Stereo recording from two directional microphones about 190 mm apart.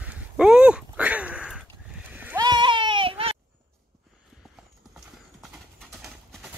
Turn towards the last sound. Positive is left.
turn(degrees=0)  # may be behind; listen again after turning